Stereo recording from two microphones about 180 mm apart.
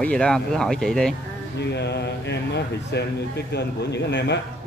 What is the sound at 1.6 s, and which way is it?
Speech, 70° left (ahead or behind).